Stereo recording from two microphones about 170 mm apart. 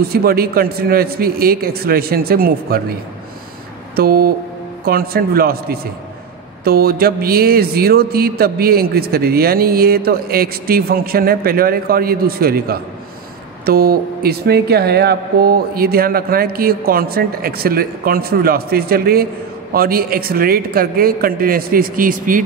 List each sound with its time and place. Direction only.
0.1 s speech: 65° right (ahead or behind)
3.9 s speech: 60° right (ahead or behind)